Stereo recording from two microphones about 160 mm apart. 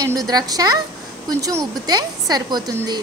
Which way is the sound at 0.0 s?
25° right (ahead or behind).